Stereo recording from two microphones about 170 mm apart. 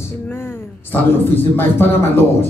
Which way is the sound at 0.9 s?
10° left (ahead or behind).